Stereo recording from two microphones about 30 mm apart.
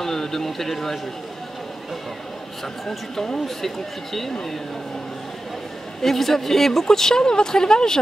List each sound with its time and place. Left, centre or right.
0.0 s a man's voice: centre
3.4 s speech: centre
6.0 s speech: centre